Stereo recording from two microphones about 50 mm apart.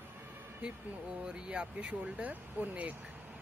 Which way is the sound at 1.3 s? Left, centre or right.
Right.